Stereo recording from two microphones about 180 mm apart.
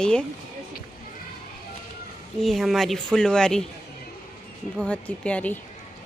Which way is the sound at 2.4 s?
Centre (ahead or behind).